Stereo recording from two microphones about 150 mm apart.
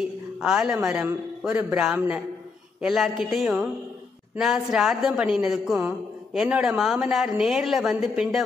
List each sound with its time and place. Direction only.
0.4 s a woman's voice: 5° right (ahead or behind)